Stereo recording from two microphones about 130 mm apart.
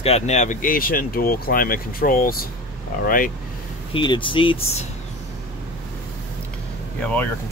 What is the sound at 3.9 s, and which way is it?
Speech, 40° left (ahead or behind).